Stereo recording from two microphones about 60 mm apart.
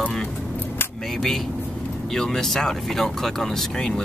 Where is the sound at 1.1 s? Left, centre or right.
Centre.